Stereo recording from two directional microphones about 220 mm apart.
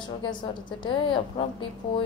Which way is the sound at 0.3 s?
20° left (ahead or behind).